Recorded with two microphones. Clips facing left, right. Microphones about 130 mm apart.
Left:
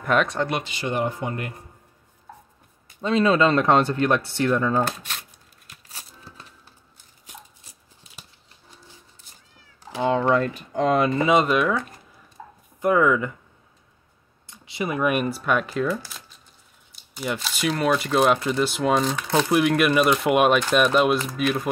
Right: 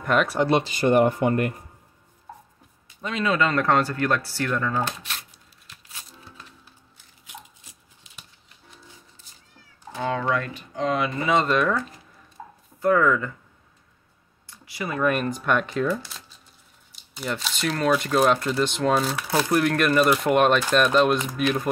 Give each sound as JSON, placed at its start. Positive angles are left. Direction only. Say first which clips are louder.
{"t": 0.0, "sound": "speech", "louder": "left 1 dB", "side_deg": 0}
{"t": 0.7, "sound": "speech", "louder": "right 7 dB", "side_deg": -50}
{"t": 3.0, "sound": "speech", "louder": "left 5 dB", "side_deg": 30}
{"t": 5.7, "sound": "music", "louder": "left 1 dB", "side_deg": 35}
{"t": 10.0, "sound": "a sound", "louder": "left 5 dB", "side_deg": 25}
{"t": 10.7, "sound": "speech", "louder": "left 4 dB", "side_deg": 50}
{"t": 11.2, "sound": "speech", "louder": "right 2 dB", "side_deg": 15}
{"t": 12.8, "sound": "speech", "louder": "left 1 dB", "side_deg": 15}
{"t": 14.5, "sound": "speech", "louder": "left 3 dB", "side_deg": 20}
{"t": 18.9, "sound": "speech", "louder": "left 2 dB", "side_deg": -5}
{"t": 19.5, "sound": "speech", "louder": "left 1 dB", "side_deg": 5}